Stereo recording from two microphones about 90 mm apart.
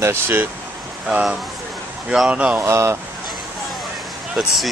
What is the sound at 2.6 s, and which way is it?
Speech, 30° right (ahead or behind).